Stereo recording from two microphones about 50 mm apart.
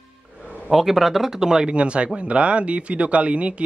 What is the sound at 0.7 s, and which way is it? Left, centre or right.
Speech, centre.